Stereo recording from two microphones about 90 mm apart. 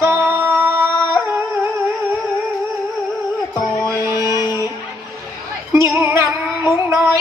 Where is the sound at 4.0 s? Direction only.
40° right (ahead or behind).